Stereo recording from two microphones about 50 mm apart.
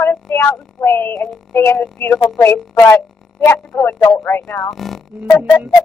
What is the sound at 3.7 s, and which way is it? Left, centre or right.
Speech, left.